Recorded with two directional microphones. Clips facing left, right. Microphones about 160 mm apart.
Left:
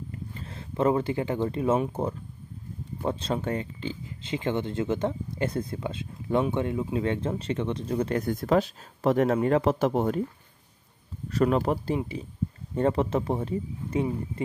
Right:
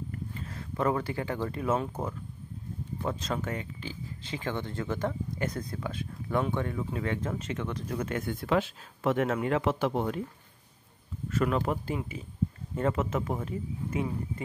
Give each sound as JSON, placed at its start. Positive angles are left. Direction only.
{"t": 0.1, "sound": "speech", "side_deg": 25}
{"t": 11.2, "sound": "speech", "side_deg": 35}